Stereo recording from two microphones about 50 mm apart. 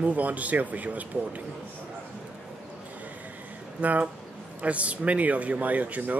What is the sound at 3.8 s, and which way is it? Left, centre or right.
Speech, right.